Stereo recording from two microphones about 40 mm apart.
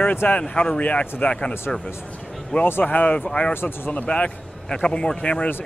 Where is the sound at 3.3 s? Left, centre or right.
Left.